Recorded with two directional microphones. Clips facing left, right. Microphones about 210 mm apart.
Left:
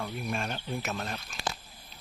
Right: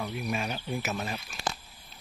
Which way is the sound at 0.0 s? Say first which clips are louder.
Right 2 dB; 5° right (ahead or behind).